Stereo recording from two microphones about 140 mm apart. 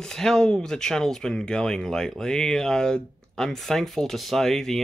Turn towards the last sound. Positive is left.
turn(degrees=5)  # may be behind; listen again after turning